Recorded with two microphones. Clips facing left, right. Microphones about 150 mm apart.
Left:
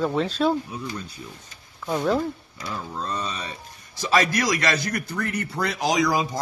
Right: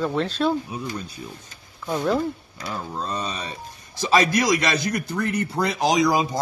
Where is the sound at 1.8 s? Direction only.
5° left (ahead or behind).